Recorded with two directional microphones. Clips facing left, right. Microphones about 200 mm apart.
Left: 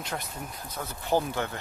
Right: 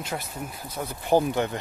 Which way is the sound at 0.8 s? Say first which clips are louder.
Right 5 dB; 15° right (ahead or behind).